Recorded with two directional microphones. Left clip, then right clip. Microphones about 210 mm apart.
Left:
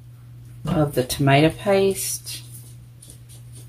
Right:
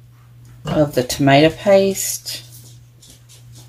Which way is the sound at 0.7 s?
20° right (ahead or behind).